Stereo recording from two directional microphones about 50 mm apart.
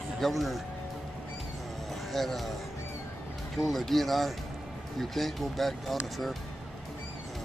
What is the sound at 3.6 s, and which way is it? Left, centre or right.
Speech, centre.